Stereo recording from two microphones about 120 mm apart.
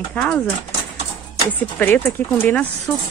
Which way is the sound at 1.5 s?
15° left (ahead or behind).